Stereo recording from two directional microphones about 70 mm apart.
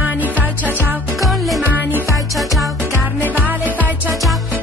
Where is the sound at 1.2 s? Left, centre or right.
Centre.